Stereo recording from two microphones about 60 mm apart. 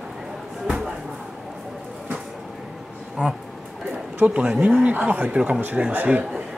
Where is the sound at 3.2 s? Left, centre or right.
Centre.